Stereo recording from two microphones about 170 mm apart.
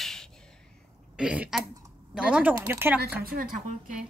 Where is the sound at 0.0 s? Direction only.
5° left (ahead or behind).